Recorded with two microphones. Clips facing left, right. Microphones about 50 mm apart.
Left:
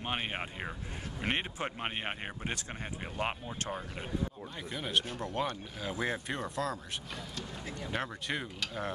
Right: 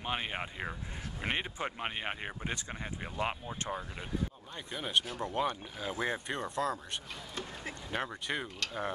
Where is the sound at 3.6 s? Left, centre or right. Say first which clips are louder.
Even; centre.